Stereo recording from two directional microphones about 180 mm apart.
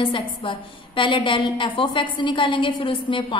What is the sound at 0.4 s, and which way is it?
A woman's voice, 30° left (ahead or behind).